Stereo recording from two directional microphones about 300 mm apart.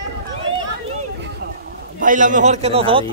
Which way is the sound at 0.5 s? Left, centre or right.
Right.